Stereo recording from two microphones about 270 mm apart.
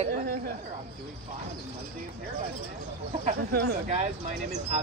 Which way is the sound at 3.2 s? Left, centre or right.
Right.